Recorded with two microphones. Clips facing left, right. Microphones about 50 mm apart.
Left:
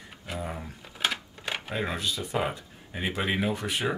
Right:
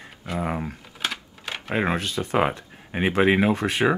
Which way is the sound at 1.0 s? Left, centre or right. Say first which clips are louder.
Left 1 dB; centre.